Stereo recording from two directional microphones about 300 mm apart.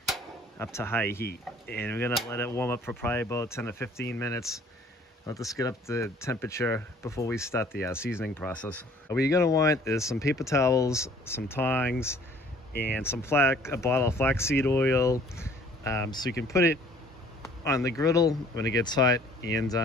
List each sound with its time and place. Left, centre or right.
0.0 s a sound: centre
1.2 s speech: left
1.8 s speech: centre
12.9 s speech: centre
17.4 s speech: centre